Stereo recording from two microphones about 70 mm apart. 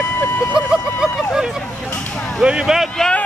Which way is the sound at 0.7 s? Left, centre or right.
Centre.